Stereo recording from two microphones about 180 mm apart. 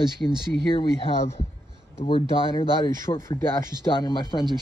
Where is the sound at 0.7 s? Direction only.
30° left (ahead or behind).